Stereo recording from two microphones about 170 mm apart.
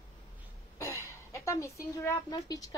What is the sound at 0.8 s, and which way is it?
A woman's voice, 15° left (ahead or behind).